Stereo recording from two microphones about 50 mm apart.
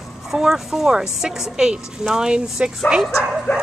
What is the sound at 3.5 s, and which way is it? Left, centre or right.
Dog, left.